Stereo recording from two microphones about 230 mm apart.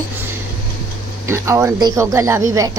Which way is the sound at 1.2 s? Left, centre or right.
Centre.